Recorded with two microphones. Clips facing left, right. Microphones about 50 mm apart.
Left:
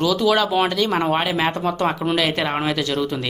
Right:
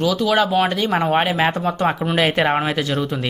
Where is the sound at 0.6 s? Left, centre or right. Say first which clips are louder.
Even; right.